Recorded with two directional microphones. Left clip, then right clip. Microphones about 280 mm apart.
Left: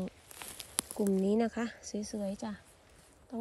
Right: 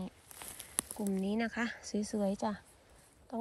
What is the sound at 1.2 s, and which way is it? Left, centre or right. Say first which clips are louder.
Speech: left 4 dB; centre.